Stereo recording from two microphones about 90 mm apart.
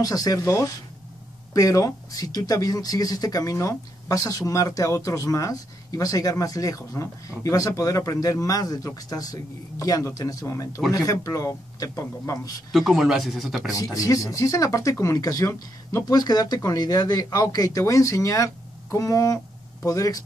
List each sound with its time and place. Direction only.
0.0 s speech: 45° left (ahead or behind)
12.7 s speech: centre (ahead or behind)
13.7 s speech: 40° left (ahead or behind)